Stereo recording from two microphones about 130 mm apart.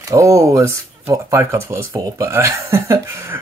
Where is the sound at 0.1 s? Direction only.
25° right (ahead or behind).